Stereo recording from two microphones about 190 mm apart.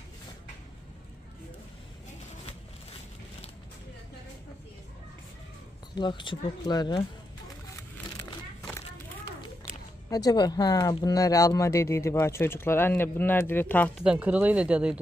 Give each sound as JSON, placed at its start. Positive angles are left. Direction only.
{"t": 5.9, "sound": "speech", "side_deg": 25}
{"t": 8.6, "sound": "a sound", "side_deg": 15}
{"t": 10.0, "sound": "speech", "side_deg": 20}
{"t": 14.0, "sound": "speech", "side_deg": -5}